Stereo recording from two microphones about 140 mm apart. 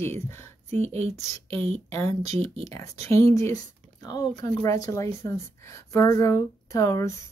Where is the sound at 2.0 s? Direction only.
20° left (ahead or behind).